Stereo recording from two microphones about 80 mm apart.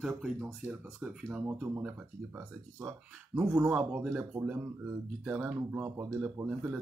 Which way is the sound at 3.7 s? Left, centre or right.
Centre.